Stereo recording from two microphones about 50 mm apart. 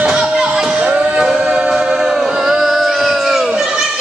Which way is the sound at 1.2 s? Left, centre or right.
Centre.